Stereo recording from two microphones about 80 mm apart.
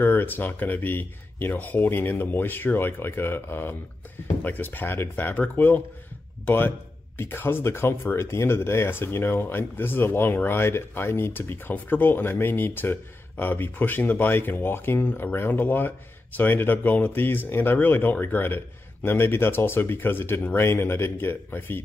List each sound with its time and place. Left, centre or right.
0.0 s speech: left